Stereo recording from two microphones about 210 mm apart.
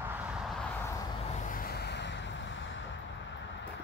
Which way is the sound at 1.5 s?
45° left (ahead or behind).